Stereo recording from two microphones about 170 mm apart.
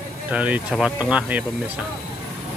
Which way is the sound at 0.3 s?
10° right (ahead or behind).